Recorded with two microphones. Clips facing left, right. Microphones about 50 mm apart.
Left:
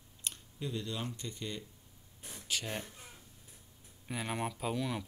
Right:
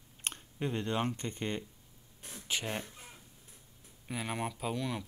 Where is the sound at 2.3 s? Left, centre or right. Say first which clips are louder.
Right 2 dB; right.